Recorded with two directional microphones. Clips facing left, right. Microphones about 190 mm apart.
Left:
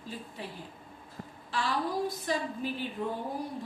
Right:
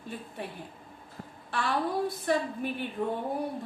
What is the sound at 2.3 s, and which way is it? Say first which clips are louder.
Speech: right 6 dB; 55° right (ahead or behind).